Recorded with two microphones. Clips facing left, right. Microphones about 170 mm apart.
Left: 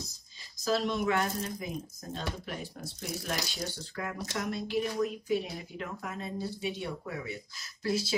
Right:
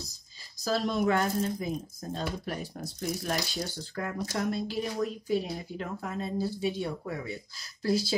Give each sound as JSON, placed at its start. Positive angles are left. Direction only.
{"t": 0.7, "sound": "speech", "side_deg": -35}